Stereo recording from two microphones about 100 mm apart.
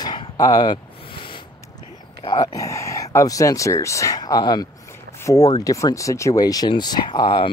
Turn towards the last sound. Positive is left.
turn(degrees=50)  # may be behind; listen again after turning